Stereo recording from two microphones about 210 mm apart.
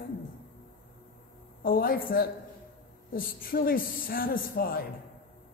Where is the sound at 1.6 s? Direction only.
45° left (ahead or behind).